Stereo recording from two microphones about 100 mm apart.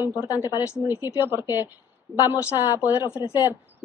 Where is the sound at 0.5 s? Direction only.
40° left (ahead or behind).